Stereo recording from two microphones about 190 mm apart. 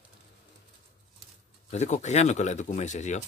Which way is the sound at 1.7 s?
35° left (ahead or behind).